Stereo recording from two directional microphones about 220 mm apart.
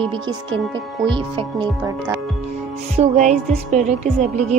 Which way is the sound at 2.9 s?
30° right (ahead or behind).